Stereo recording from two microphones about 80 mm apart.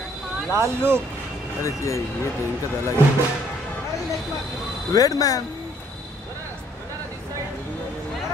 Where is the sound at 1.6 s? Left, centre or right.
Left.